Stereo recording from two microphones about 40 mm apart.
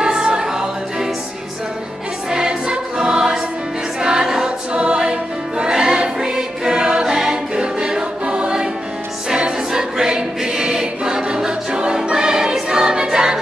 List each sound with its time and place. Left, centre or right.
0.0 s music: centre
2.3 s music: centre
4.0 s choir: centre
4.7 s music: right
5.6 s choir: centre
9.7 s choir: centre
12.1 s music: centre